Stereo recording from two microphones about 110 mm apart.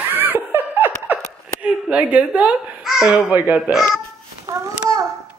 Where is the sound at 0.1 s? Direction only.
15° right (ahead or behind).